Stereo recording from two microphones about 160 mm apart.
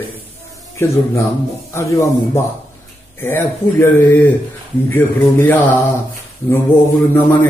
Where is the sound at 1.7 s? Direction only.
20° left (ahead or behind).